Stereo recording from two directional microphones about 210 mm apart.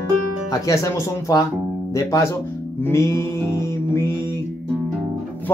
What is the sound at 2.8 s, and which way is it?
Mantra, 10° left (ahead or behind).